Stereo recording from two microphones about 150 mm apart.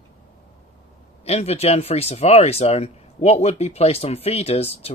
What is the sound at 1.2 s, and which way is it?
Speech, 45° left (ahead or behind).